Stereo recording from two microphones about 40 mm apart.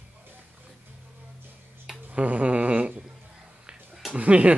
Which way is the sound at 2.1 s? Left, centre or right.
Right.